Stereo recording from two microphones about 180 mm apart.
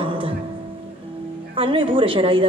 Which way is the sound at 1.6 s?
30° right (ahead or behind).